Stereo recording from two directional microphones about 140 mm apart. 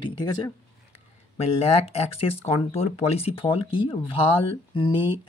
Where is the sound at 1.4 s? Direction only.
45° left (ahead or behind).